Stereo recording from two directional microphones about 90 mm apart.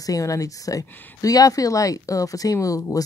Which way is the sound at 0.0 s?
40° left (ahead or behind).